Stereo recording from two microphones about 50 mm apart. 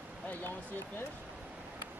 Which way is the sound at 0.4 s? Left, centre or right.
Left.